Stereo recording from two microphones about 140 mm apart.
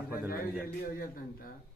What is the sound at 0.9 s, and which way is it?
Speech, 85° left.